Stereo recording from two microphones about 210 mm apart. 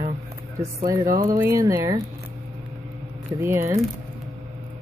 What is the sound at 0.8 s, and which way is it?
Speech, 15° right (ahead or behind).